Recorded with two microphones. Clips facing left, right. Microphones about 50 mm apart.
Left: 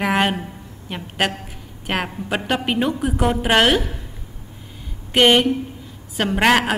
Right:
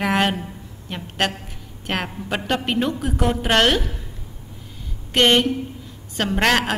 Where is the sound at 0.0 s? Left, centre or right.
Centre.